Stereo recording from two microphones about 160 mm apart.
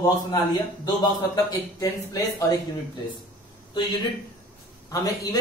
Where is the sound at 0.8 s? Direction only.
25° left (ahead or behind).